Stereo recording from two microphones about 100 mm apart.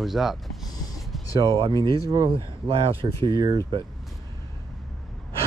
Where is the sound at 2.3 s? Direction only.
65° right (ahead or behind).